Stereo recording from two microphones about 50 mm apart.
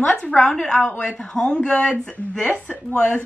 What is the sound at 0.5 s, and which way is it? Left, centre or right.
A woman's voice, left.